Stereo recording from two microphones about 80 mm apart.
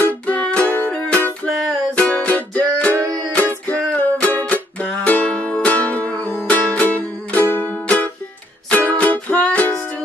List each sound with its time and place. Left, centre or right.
0.0 s music: centre
3.0 s music: right
3.6 s music: centre